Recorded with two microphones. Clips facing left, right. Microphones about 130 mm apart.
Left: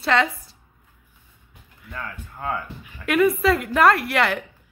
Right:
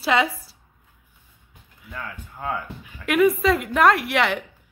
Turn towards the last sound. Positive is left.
turn(degrees=0)  # may be behind; listen again after turning